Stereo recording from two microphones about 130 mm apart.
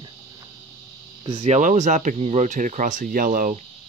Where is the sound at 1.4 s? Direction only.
70° right (ahead or behind).